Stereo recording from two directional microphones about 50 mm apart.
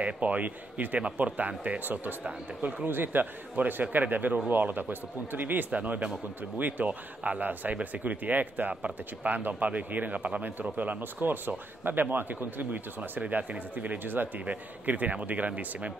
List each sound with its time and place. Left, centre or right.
0.0 s speech: right
1.8 s speech: right
5.8 s speech: right
13.2 s speech: right